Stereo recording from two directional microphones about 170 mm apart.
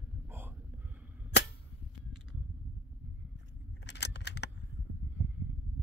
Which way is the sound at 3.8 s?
90° left.